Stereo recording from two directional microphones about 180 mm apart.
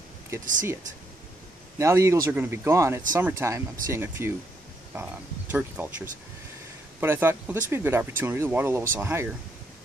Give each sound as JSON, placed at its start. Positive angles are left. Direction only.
{"t": 1.8, "sound": "speech", "side_deg": -15}